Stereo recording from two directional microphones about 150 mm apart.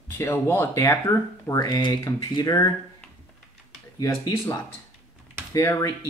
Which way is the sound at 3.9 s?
25° left (ahead or behind).